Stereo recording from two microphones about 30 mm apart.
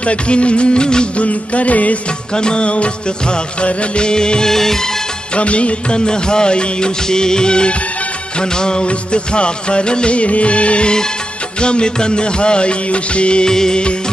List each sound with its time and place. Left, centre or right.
0.0 s music: left
1.1 s music: left
2.3 s speech: left
2.7 s music: left
3.6 s speech: left
4.6 s music: centre
5.3 s music: left
5.9 s speech: left
8.8 s music: left
11.6 s music: left
13.5 s speech: centre